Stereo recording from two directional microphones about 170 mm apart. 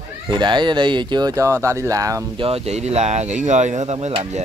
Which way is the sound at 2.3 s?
35° right (ahead or behind).